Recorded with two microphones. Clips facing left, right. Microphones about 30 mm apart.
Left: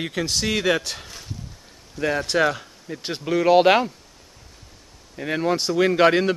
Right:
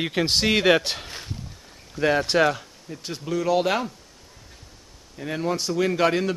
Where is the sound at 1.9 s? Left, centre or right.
Centre.